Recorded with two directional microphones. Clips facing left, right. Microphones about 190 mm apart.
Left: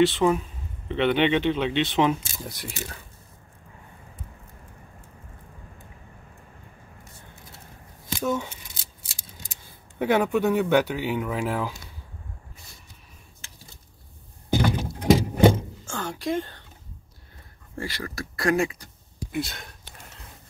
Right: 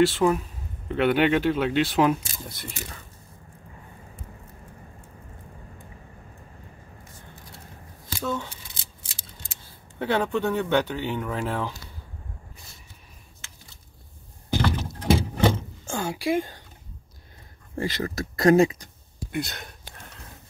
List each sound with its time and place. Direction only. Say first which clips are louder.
0.0 s speech: even; 5° right (ahead or behind)
2.4 s speech: left 2 dB; 10° left (ahead or behind)
8.2 s speech: left 3 dB; 15° left (ahead or behind)
9.9 s speech: left 3 dB; 10° left (ahead or behind)
15.0 s rodents: left 4 dB; 15° left (ahead or behind)
15.9 s a woman's voice: right 3 dB; 10° right (ahead or behind)
17.7 s speech: right 5 dB; 20° right (ahead or behind)
19.3 s speech: even; centre (ahead or behind)